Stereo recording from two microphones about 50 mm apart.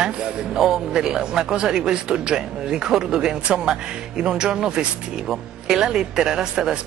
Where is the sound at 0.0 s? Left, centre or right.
Centre.